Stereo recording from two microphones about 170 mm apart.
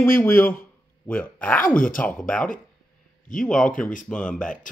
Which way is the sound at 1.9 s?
10° left (ahead or behind).